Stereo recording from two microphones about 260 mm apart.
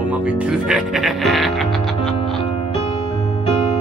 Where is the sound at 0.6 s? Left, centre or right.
Centre.